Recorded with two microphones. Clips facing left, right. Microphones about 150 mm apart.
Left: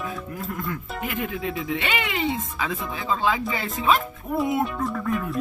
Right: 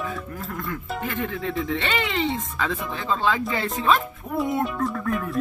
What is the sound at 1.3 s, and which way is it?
Speech, 5° left (ahead or behind).